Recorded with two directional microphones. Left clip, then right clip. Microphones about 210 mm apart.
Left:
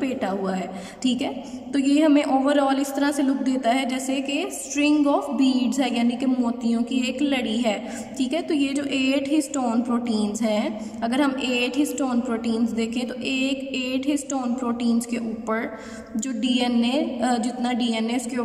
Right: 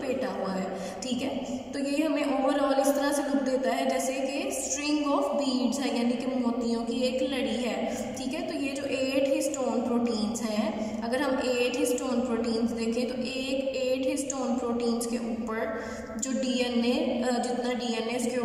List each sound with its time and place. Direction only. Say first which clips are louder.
0.0 s a sound: left 4 dB; 40° left (ahead or behind)
1.8 s a woman's voice: left 9 dB; 45° left (ahead or behind)
16.4 s a woman's voice: left 5 dB; 40° left (ahead or behind)